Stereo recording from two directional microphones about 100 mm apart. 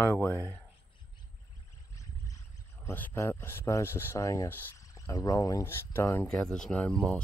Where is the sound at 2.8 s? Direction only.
20° left (ahead or behind).